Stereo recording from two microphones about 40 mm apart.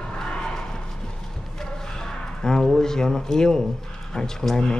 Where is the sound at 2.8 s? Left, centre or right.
Centre.